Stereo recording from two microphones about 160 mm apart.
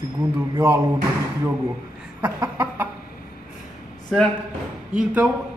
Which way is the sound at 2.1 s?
20° right (ahead or behind).